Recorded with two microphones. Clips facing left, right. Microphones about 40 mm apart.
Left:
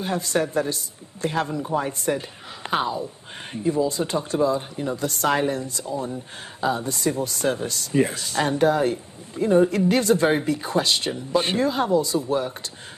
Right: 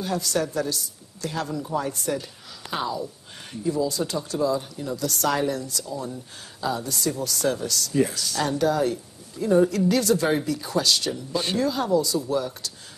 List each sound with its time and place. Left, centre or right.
0.0 s speech: left